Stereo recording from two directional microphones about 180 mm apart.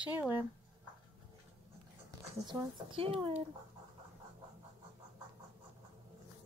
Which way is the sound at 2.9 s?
30° right (ahead or behind).